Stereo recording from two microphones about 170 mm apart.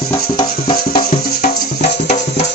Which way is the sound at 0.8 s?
60° left (ahead or behind).